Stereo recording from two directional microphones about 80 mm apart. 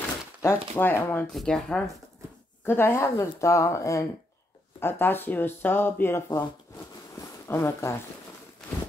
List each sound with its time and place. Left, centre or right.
0.4 s a woman's voice: left
1.3 s speech: centre
2.6 s a woman's voice: left
4.7 s speech: left
7.4 s a woman's voice: left